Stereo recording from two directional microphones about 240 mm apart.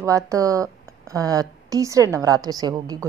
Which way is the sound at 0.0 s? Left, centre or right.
Centre.